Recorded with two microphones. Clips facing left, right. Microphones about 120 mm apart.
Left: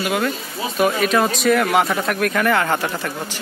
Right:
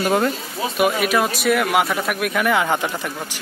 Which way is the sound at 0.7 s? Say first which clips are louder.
Left 1 dB; 10° right (ahead or behind).